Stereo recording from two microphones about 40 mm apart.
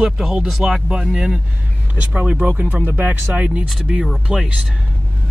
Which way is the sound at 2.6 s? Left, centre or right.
Right.